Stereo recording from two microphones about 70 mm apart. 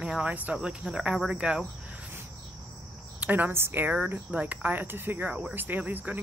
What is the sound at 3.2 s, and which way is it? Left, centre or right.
Speech, right.